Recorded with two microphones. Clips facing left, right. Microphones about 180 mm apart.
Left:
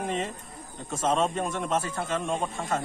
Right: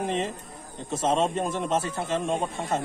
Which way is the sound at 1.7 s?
30° right (ahead or behind).